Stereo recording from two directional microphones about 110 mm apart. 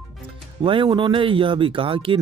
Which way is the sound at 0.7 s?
50° right (ahead or behind).